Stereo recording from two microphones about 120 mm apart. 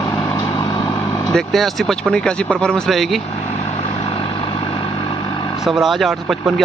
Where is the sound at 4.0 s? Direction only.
50° left (ahead or behind).